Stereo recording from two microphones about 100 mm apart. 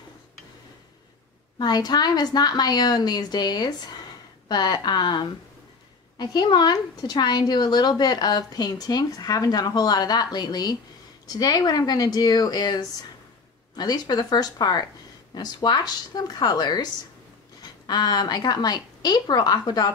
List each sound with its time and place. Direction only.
1.6 s a woman's voice: 45° left (ahead or behind)